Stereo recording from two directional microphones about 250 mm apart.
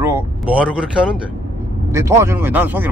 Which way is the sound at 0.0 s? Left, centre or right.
Centre.